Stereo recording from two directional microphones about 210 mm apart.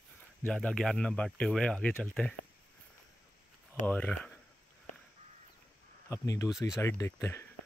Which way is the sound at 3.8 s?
5° left (ahead or behind).